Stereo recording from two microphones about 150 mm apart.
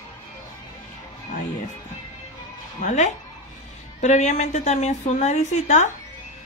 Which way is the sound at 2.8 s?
50° left (ahead or behind).